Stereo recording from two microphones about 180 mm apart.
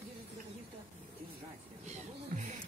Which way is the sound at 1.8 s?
40° right (ahead or behind).